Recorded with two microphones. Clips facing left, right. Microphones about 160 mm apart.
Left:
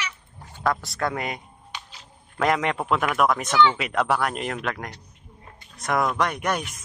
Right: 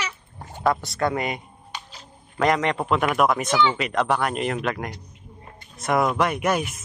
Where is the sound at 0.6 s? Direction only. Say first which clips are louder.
Right 3 dB; centre (ahead or behind).